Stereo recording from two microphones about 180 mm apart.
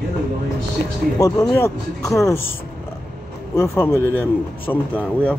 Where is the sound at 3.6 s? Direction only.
15° left (ahead or behind).